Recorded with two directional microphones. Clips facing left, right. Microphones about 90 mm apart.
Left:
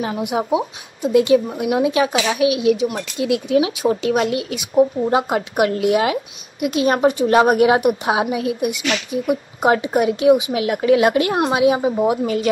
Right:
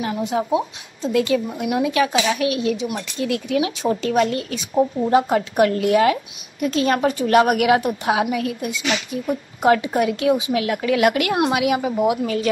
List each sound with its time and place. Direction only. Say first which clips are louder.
0.0 s a woman's voice: left 1 dB; 15° left (ahead or behind)